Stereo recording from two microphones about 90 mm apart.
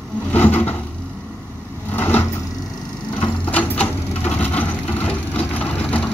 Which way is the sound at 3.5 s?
20° left (ahead or behind).